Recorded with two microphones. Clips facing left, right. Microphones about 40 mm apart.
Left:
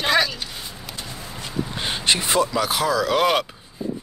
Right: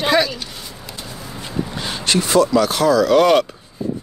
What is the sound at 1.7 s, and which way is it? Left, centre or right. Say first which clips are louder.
Speech: right 2 dB; left.